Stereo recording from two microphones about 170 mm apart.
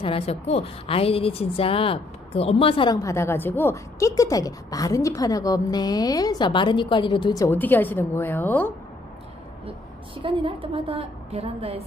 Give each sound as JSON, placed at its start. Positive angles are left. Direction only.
{"t": 0.0, "sound": "a woman's voice", "side_deg": 35}
{"t": 7.4, "sound": "a woman's voice", "side_deg": 10}
{"t": 9.7, "sound": "a woman's voice", "side_deg": -30}